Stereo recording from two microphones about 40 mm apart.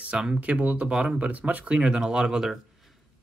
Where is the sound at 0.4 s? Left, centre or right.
Right.